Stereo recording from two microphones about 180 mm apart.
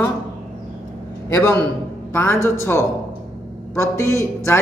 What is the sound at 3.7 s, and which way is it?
Speech, 15° left (ahead or behind).